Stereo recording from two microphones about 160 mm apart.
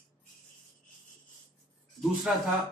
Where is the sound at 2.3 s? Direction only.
5° right (ahead or behind).